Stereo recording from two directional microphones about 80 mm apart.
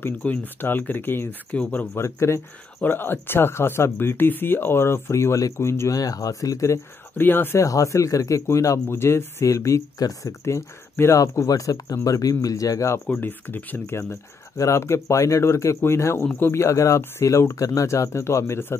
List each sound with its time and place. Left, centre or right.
0.0 s speech: left
2.0 s speech: left
2.8 s speech: left
5.9 s speech: left
7.2 s speech: left
7.6 s speech: left
9.9 s speech: left
10.4 s speech: left
11.1 s speech: left
13.1 s speech: left
14.6 s speech: left